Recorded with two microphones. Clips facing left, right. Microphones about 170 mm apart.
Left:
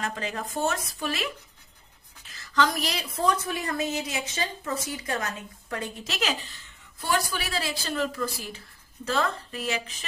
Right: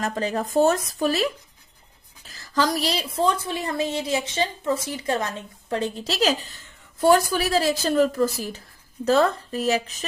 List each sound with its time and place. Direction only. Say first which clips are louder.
0.0 s a woman's voice: right 7 dB; 40° right (ahead or behind)